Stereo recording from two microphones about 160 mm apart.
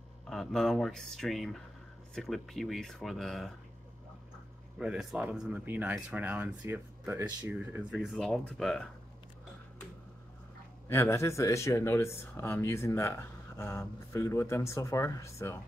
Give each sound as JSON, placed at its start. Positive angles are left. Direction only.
{"t": 0.3, "sound": "speech", "side_deg": 0}
{"t": 4.7, "sound": "speech", "side_deg": -5}
{"t": 7.9, "sound": "speech", "side_deg": 0}
{"t": 10.9, "sound": "speech", "side_deg": 15}